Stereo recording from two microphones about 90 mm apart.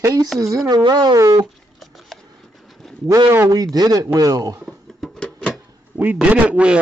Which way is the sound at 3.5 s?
45° right (ahead or behind).